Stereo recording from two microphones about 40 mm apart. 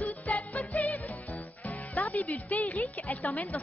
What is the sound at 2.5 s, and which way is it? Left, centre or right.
A woman's voice, left.